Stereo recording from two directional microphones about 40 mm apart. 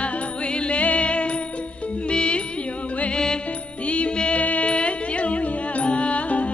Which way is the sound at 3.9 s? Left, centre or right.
Left.